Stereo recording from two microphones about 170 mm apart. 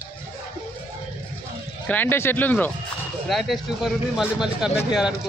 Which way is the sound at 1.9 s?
10° left (ahead or behind).